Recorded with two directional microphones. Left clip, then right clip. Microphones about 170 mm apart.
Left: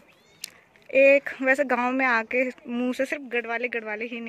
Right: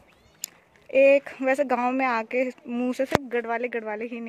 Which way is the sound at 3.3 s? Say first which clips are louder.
Even; 20° right (ahead or behind).